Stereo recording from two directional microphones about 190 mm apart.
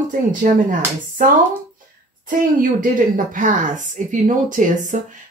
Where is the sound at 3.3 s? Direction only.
40° right (ahead or behind).